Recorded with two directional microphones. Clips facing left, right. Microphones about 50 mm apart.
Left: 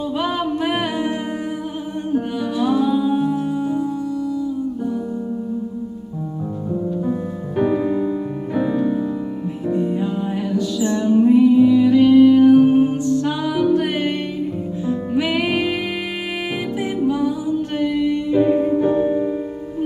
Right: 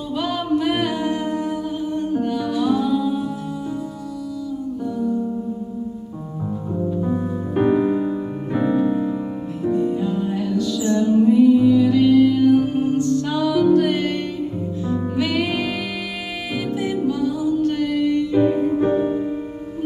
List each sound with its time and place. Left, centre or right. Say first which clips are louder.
0.2 s singing: right 2 dB; left
2.1 s music: left 3 dB; centre
7.5 s music: right 1 dB; centre
9.7 s music: even; centre
14.9 s music: left 2 dB; centre
17.6 s music: even; left
18.3 s music: left 4 dB; centre
18.8 s music: left 2 dB; centre